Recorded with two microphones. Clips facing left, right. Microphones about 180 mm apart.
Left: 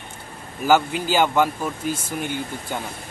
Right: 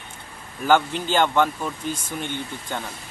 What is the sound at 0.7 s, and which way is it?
A man's voice, 5° left (ahead or behind).